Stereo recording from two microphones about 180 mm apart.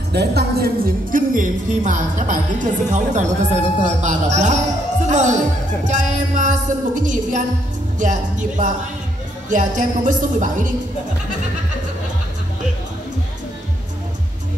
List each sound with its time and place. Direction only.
0.1 s speech: 65° right (ahead or behind); by 10.7 s 45° right (ahead or behind)